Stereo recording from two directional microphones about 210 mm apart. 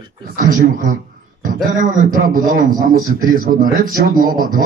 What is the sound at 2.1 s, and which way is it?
Speech, 40° right (ahead or behind).